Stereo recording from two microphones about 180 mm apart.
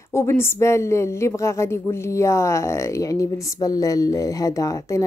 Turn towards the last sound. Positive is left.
turn(degrees=20)  # may be behind; listen again after turning